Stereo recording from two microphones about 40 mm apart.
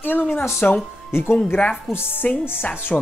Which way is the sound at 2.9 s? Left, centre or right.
Left.